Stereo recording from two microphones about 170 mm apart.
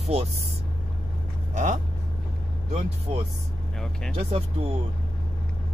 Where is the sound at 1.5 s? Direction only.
45° right (ahead or behind).